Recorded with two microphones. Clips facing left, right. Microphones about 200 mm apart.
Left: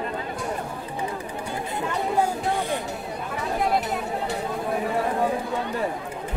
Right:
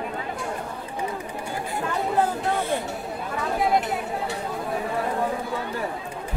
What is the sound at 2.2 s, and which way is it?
Speech, 15° left (ahead or behind).